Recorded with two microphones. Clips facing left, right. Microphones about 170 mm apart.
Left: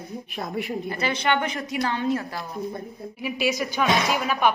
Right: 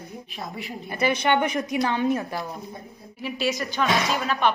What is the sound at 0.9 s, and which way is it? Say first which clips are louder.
A woman's voice: right 4 dB; 20° right (ahead or behind).